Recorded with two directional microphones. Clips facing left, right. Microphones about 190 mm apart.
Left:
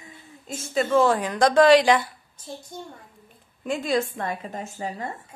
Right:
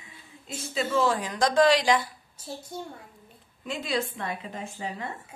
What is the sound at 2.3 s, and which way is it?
Speech, 10° right (ahead or behind).